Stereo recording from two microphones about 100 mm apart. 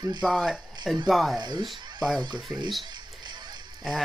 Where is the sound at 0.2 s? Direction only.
Centre (ahead or behind).